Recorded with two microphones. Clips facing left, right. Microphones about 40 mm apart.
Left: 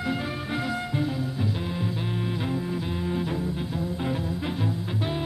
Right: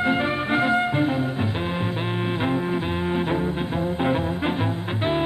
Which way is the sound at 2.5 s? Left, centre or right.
Right.